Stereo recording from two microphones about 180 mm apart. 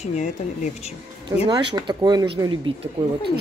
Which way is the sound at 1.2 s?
25° right (ahead or behind).